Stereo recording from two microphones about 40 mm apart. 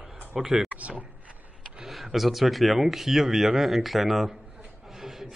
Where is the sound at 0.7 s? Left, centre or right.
Right.